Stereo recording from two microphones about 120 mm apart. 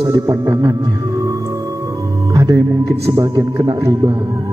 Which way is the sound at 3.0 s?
25° right (ahead or behind).